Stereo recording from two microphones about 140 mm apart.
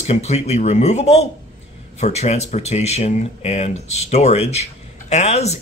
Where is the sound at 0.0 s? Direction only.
50° left (ahead or behind).